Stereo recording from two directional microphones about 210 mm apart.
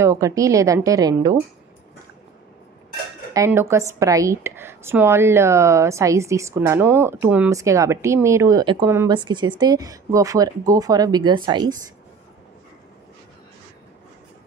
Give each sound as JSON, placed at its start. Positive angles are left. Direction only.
{"t": 0.0, "sound": "a woman's voice", "side_deg": -15}
{"t": 3.3, "sound": "a woman's voice", "side_deg": -10}